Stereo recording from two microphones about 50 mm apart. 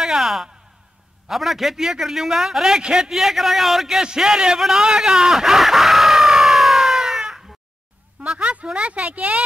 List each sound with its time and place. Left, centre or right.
0.0 s a man's voice: centre
8.2 s speech: right